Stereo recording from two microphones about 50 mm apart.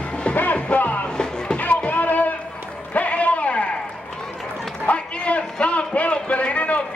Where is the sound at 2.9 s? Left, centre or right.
Left.